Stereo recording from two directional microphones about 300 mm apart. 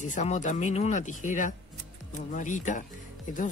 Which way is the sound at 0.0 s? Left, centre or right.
Left.